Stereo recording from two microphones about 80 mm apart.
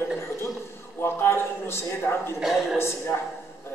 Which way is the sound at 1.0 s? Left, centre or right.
Left.